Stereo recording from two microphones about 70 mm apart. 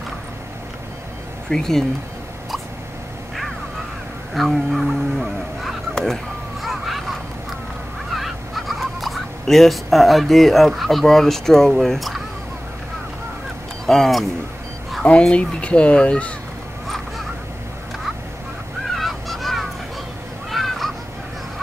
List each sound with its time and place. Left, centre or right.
1.5 s speech: centre
4.3 s livestock: centre
6.6 s vehicle: centre
8.1 s speech: centre
13.8 s speech: centre
15.0 s speech: centre
18.9 s goose: centre
20.5 s honk: centre